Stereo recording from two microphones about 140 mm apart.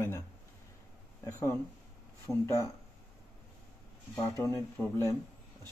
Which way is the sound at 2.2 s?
20° left (ahead or behind).